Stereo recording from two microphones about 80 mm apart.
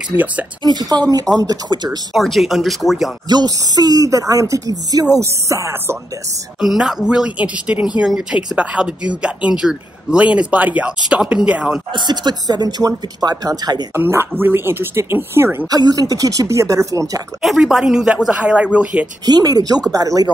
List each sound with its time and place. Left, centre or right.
0.1 s speech: left
0.7 s speech: right
1.3 s speech: centre
1.7 s speech: right
2.1 s speech: centre
3.3 s speech: right
6.6 s speech: centre
11.9 s speech: right
13.9 s speech: right
15.7 s speech: right
17.4 s speech: centre
19.2 s speech: right